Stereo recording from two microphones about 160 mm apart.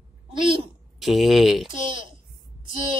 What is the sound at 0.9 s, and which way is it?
Speech, centre (ahead or behind).